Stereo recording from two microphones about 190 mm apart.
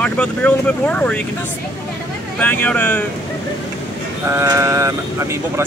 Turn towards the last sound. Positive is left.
turn(degrees=-15)  # may be behind; listen again after turning